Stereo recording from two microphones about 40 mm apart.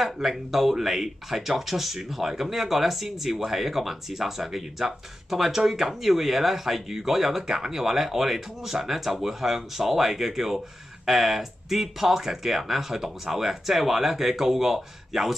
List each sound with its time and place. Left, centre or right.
0.0 s speech: centre